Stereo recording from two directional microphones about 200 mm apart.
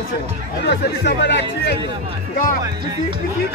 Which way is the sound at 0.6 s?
55° left (ahead or behind).